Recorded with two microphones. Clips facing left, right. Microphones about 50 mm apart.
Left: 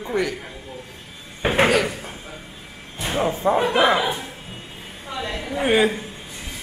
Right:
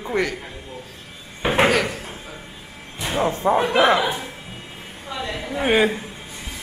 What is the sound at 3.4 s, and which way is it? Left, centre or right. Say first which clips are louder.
Speech: right 1 dB; centre.